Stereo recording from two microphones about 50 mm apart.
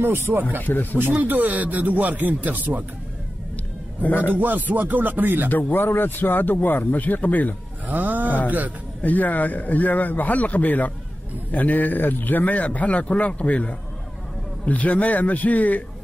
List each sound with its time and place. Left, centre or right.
0.0 s speech: right
0.6 s speech: left
1.2 s speech: right
4.2 s speech: right
5.5 s speech: left
7.9 s speech: right
9.0 s speech: left